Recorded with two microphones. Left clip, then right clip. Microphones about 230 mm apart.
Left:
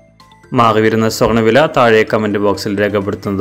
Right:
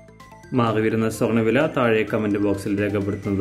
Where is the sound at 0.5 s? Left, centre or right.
Centre.